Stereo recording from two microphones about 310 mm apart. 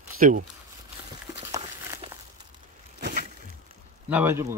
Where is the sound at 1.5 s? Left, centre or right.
Centre.